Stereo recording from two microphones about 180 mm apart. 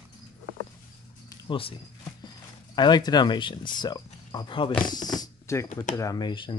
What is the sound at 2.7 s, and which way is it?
Speech, 25° left (ahead or behind).